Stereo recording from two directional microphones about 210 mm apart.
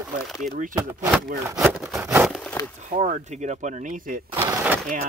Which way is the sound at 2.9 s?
30° right (ahead or behind).